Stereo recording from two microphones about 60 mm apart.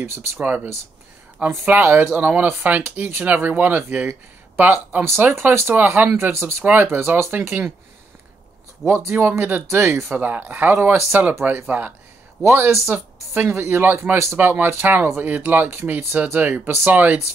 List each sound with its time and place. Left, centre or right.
0.0 s speech: right
1.4 s speech: right
1.8 s speech: right
5.2 s speech: right
5.8 s speech: right
6.6 s speech: right
6.9 s speech: right
8.8 s speech: right
10.1 s speech: right
12.5 s speech: right